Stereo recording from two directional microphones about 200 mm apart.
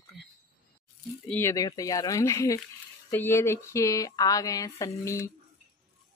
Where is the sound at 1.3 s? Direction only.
10° left (ahead or behind).